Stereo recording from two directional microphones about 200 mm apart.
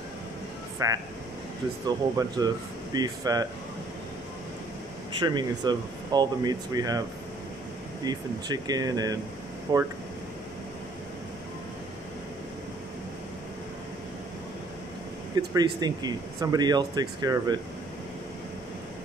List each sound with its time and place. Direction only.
0.8 s speech: 15° right (ahead or behind)
5.2 s speech: 20° right (ahead or behind)
8.0 s speech: 20° right (ahead or behind)
15.3 s speech: 20° right (ahead or behind)